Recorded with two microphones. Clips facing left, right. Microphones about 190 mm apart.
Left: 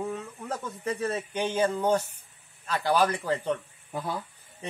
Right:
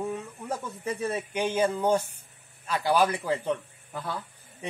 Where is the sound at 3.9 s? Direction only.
20° left (ahead or behind).